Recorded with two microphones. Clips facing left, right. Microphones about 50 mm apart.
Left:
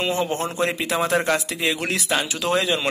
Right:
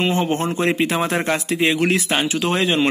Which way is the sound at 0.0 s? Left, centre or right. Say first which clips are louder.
Right 3 dB; right.